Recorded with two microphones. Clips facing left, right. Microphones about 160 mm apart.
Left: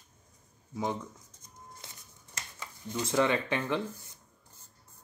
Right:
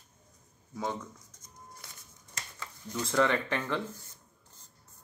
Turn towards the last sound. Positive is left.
turn(degrees=15)  # may be behind; listen again after turning